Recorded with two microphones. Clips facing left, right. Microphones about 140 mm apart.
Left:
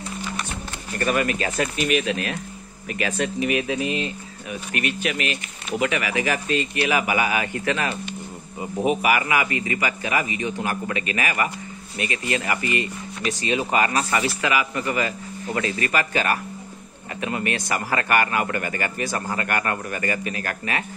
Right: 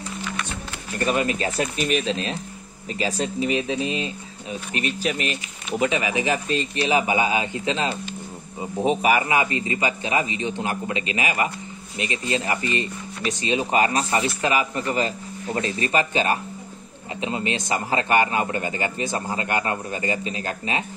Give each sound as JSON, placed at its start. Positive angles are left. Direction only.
{"t": 0.9, "sound": "a man's voice", "side_deg": -25}
{"t": 6.4, "sound": "speech", "side_deg": 0}
{"t": 6.7, "sound": "a man's voice", "side_deg": -25}